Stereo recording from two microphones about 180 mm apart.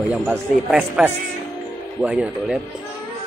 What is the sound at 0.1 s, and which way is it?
Speech, 5° right (ahead or behind).